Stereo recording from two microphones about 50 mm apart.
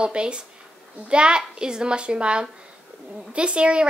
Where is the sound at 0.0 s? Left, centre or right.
Centre.